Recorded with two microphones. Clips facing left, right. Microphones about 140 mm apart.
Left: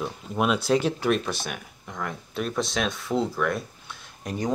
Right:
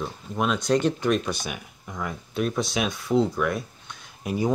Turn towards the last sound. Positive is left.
turn(degrees=-5)  # may be behind; listen again after turning